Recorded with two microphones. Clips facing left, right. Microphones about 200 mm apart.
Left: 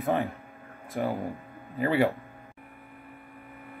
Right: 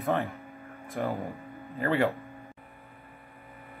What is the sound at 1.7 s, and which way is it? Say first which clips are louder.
Speech: left 2 dB; 10° left (ahead or behind).